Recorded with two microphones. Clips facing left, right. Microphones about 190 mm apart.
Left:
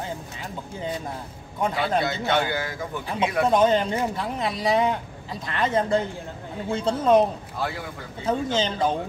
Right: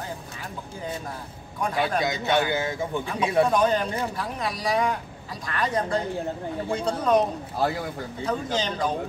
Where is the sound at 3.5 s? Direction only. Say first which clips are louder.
Left 3 dB; 25° left (ahead or behind).